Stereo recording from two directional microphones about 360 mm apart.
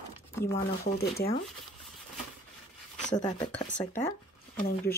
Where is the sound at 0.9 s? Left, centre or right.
Left.